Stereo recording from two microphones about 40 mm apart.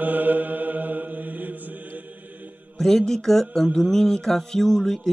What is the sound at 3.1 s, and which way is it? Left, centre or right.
Speech, centre.